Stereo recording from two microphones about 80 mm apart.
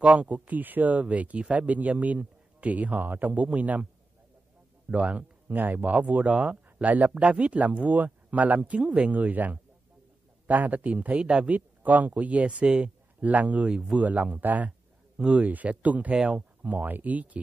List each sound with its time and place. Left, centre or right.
0.0 s a man's voice: centre
4.9 s a man's voice: centre